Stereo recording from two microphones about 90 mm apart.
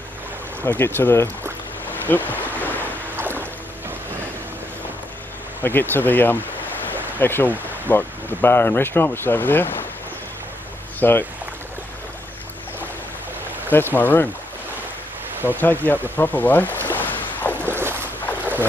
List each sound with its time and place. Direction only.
0.7 s speech: 25° left (ahead or behind)
1.9 s boat: 20° left (ahead or behind)
3.2 s boat: 25° right (ahead or behind)
5.6 s speech: 25° left (ahead or behind)
11.0 s speech: 25° left (ahead or behind)
13.7 s speech: 25° left (ahead or behind)
15.6 s speech: 20° left (ahead or behind)
16.6 s boat: 25° right (ahead or behind)
16.9 s a sound: 20° left (ahead or behind)
17.6 s boat: 25° right (ahead or behind)